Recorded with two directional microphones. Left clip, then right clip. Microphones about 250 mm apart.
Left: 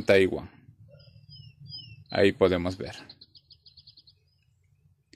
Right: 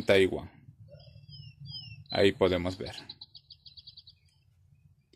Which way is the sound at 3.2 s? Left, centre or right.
Right.